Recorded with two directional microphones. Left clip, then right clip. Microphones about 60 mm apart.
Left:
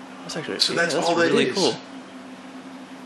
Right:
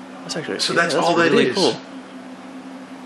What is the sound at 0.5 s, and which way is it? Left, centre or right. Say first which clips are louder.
Speech: right 3 dB; right.